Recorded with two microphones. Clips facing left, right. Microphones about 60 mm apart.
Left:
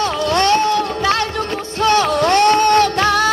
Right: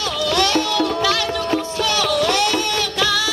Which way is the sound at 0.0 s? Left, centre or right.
Left.